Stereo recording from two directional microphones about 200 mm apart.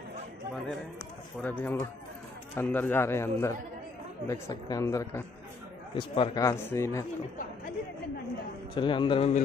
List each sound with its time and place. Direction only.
1.4 s speech: 10° left (ahead or behind)
5.9 s speech: 25° left (ahead or behind)
8.7 s a man's voice: 25° left (ahead or behind)